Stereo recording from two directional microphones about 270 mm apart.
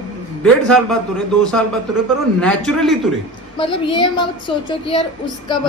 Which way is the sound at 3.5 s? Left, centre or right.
Centre.